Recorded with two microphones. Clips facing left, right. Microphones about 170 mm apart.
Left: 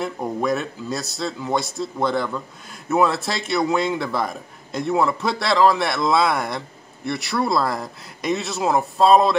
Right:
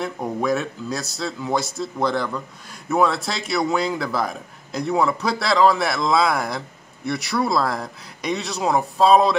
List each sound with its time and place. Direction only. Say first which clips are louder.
0.0 s speech: even; centre (ahead or behind)